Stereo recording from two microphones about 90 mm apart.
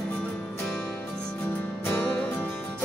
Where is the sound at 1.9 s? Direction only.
20° left (ahead or behind).